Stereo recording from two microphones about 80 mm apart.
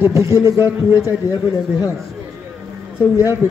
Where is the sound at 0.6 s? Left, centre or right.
Left.